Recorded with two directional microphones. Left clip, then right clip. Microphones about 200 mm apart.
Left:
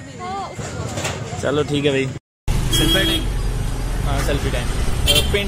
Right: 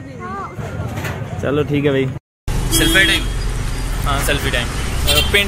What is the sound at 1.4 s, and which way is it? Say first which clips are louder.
Speech: right 2 dB; centre (ahead or behind).